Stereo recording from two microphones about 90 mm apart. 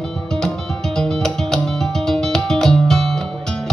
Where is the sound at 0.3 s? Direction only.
5° left (ahead or behind).